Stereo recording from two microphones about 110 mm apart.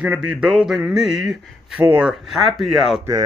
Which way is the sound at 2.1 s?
Centre (ahead or behind).